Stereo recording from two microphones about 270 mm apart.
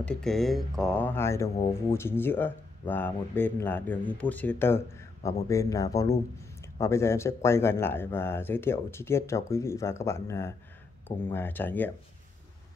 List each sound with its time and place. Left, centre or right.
0.0 s speech: centre